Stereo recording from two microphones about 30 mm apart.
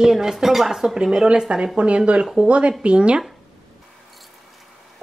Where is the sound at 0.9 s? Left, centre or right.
Right.